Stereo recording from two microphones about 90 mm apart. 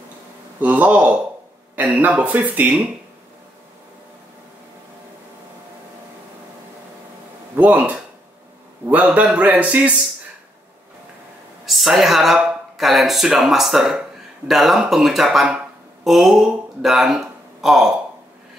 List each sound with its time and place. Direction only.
0.6 s a man's voice: 15° right (ahead or behind)
7.5 s a man's voice: 15° right (ahead or behind)
11.6 s speech: centre (ahead or behind)
15.5 s a sound: 5° right (ahead or behind)